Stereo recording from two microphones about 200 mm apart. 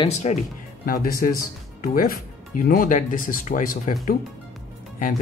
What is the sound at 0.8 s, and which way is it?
Speech, 45° left (ahead or behind).